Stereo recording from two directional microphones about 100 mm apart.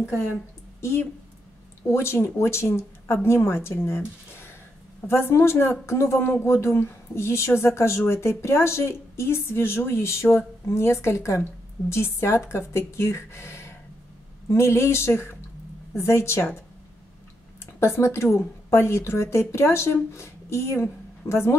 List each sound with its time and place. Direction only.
0.7 s a woman's voice: 25° left (ahead or behind)
17.7 s a woman's voice: 25° left (ahead or behind)